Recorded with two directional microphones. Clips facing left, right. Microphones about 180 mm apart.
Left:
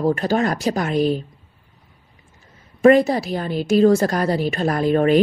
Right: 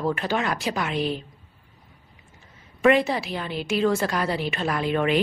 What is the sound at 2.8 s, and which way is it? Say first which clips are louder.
A woman's voice: left 6 dB; 40° left (ahead or behind).